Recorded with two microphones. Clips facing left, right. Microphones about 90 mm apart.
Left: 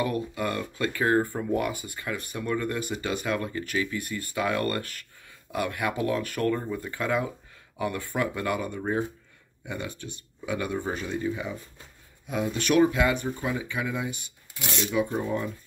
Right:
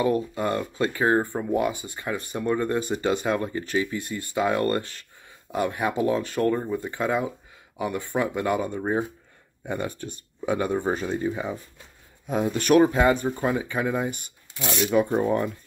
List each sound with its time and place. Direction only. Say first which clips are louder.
0.0 s speech: right 4 dB; 25° right (ahead or behind)
9.7 s speech: right 5 dB; 45° right (ahead or behind)
14.5 s speech: right 5 dB; 25° right (ahead or behind)
14.9 s speech: right 6 dB; 45° right (ahead or behind)